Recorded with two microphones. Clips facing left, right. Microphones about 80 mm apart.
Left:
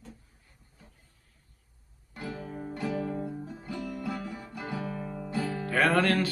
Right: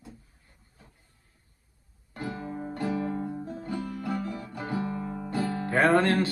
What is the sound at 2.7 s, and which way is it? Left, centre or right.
Music, right.